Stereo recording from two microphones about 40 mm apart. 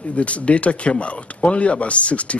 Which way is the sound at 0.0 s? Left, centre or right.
Left.